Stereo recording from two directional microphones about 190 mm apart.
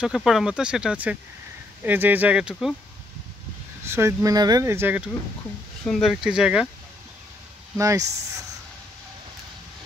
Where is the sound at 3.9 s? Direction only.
15° right (ahead or behind).